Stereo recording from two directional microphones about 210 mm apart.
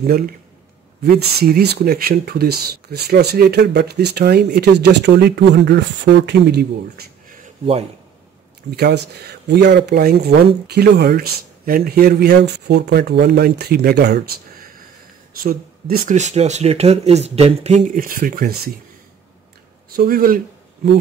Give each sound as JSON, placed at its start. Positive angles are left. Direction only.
{"t": 0.0, "sound": "speech", "side_deg": -45}
{"t": 8.6, "sound": "speech", "side_deg": -50}
{"t": 20.0, "sound": "speech", "side_deg": -45}